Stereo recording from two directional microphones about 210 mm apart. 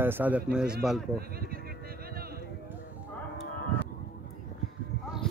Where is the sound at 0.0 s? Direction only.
10° right (ahead or behind).